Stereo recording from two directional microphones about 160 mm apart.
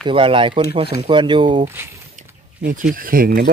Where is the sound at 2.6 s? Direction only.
60° right (ahead or behind).